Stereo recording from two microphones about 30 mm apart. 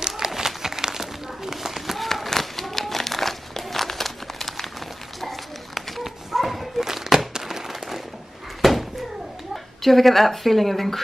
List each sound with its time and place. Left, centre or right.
0.2 s a sound: centre
0.6 s run: centre
2.0 s crumpling: centre
6.0 s dog: centre
7.3 s a sound: centre
9.8 s a woman's voice: centre